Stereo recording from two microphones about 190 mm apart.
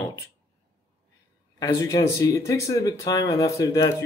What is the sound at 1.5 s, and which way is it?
Speech, 20° left (ahead or behind).